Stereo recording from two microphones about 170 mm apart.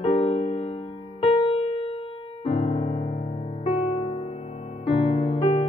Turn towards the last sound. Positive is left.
turn(degrees=35)  # may be behind; listen again after turning